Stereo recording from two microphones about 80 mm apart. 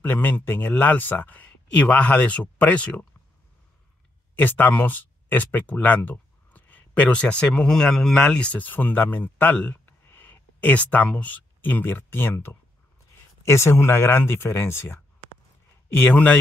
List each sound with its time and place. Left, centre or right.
0.0 s speech: left
4.4 s speech: left
16.0 s speech: left